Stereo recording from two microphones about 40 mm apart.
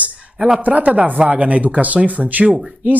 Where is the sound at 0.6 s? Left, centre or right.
Right.